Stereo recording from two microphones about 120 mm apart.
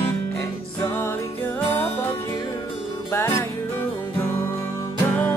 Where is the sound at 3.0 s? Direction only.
20° left (ahead or behind).